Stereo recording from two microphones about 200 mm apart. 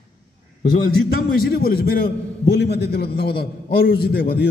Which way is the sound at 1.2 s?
50° left (ahead or behind).